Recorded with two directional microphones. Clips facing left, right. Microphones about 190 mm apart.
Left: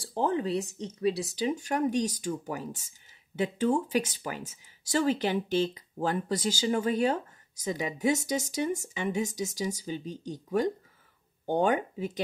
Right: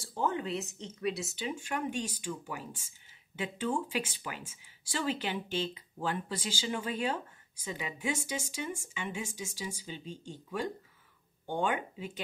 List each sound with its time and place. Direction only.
0.0 s speech: 35° left (ahead or behind)